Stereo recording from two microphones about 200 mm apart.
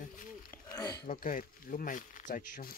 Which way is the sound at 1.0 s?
40° left (ahead or behind).